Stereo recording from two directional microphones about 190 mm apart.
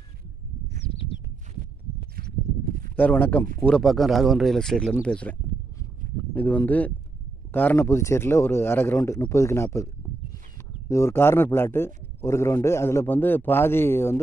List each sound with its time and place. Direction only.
2.1 s a sound: 50° right (ahead or behind)
3.0 s a man's voice: 10° left (ahead or behind)
6.3 s a man's voice: 10° left (ahead or behind)
10.9 s a man's voice: 15° left (ahead or behind)